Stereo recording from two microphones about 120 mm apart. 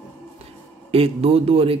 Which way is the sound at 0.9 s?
55° right (ahead or behind).